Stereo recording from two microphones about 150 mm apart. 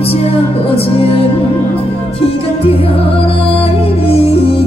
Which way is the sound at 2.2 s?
40° left (ahead or behind).